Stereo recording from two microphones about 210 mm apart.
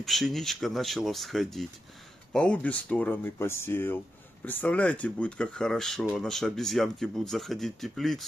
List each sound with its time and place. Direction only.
0.0 s speech: centre (ahead or behind)